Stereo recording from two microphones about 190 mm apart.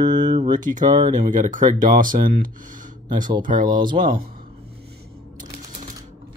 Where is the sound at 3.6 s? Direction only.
25° right (ahead or behind).